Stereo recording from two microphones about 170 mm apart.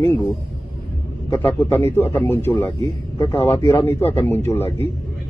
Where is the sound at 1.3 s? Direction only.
10° left (ahead or behind).